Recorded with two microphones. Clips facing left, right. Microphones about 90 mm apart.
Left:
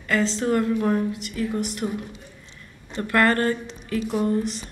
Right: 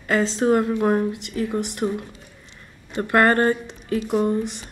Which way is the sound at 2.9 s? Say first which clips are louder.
Right 3 dB; 20° right (ahead or behind).